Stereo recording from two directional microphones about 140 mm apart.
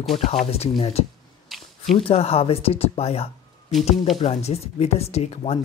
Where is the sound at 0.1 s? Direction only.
45° left (ahead or behind).